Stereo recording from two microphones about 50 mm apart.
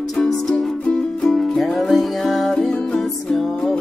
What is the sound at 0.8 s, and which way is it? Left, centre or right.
Music, centre.